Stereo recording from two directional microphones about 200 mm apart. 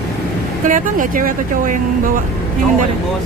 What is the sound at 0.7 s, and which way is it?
Speech, 40° right (ahead or behind).